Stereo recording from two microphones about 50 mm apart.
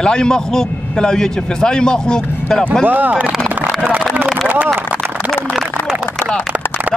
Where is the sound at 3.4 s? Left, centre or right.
Right.